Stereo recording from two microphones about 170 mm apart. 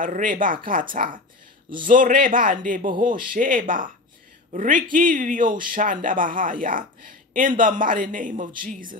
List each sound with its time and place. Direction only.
0.0 s speech: 50° right (ahead or behind)